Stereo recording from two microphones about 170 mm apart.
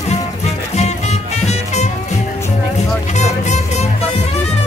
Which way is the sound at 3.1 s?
40° left (ahead or behind).